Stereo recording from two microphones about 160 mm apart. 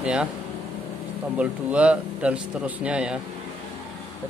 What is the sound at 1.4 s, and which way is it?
A man's voice, 10° right (ahead or behind).